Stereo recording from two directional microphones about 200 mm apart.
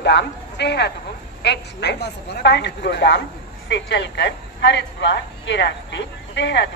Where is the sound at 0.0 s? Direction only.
60° left (ahead or behind).